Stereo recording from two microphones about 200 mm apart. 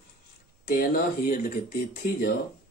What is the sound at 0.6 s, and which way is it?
Speech, 45° left (ahead or behind).